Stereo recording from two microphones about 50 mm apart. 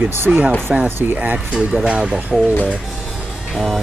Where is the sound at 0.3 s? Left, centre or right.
Right.